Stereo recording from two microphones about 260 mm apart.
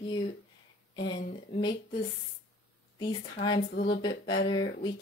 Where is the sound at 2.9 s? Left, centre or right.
Centre.